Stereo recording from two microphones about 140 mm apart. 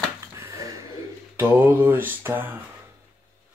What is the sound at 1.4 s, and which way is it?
Mantra, 15° right (ahead or behind).